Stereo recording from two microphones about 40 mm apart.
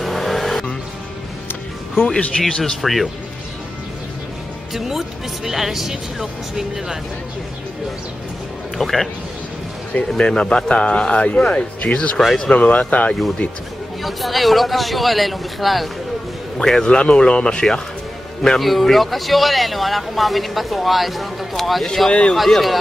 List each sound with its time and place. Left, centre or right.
0.0 s vehicle: centre
2.4 s speech: centre
2.8 s speech: centre
4.7 s speech: centre
8.7 s a man's voice: centre
10.0 s a man's voice: left
14.0 s speech: centre
16.5 s a man's voice: centre
16.8 s a man's voice: left
18.6 s speech: centre